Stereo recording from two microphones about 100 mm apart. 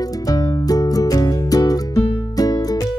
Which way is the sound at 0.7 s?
40° left (ahead or behind).